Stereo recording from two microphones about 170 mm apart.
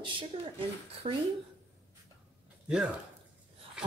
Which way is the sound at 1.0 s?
35° right (ahead or behind).